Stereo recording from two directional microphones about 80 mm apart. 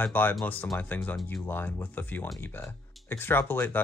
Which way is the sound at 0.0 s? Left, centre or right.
Left.